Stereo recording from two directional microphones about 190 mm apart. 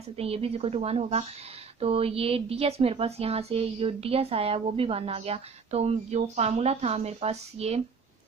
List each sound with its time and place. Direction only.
0.1 s speech: 30° right (ahead or behind)